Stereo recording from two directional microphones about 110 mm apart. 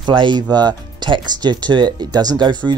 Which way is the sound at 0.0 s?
45° right (ahead or behind).